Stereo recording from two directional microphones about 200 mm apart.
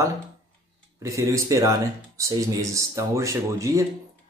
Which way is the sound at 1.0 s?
15° right (ahead or behind).